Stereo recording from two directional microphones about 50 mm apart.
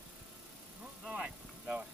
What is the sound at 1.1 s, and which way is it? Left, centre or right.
Horse, centre.